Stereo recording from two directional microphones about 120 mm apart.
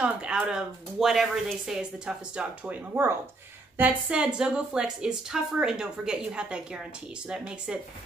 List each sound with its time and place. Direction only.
0.0 s speech: 10° right (ahead or behind)